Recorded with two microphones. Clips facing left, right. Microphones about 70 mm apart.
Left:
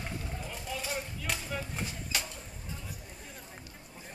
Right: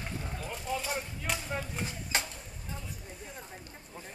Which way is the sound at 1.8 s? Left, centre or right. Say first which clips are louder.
Right 2 dB; right.